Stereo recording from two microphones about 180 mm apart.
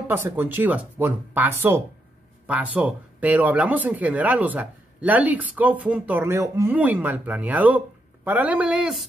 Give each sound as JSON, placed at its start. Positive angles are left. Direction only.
{"t": 0.1, "sound": "speech", "side_deg": -10}